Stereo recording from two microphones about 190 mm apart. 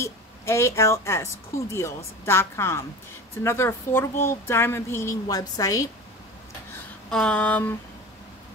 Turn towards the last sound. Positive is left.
turn(degrees=10)  # may be behind; listen again after turning